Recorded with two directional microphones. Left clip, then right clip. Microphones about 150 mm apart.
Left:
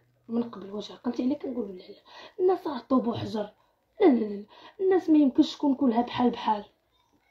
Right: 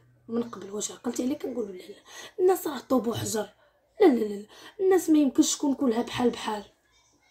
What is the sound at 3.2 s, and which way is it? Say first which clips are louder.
Speech: right 2 dB; 40° right (ahead or behind).